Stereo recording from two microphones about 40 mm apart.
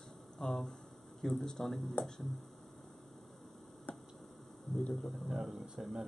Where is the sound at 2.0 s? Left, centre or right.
Left.